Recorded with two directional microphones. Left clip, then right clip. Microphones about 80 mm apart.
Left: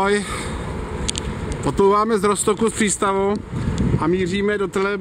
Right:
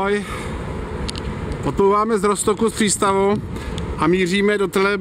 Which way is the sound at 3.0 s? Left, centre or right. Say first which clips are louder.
Right 3 dB; right.